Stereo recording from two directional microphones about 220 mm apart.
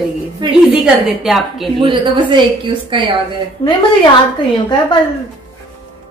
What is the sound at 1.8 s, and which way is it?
A woman's voice, 20° right (ahead or behind).